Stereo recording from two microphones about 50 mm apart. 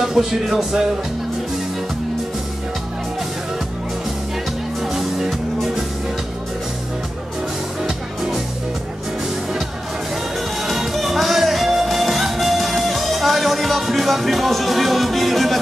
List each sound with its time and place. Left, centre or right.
0.0 s speech: centre
4.8 s music: centre
10.6 s music: centre